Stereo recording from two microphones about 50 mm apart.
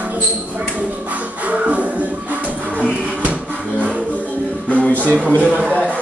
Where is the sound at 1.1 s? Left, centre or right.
Right.